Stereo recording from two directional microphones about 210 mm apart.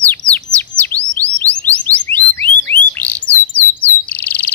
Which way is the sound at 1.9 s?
10° left (ahead or behind).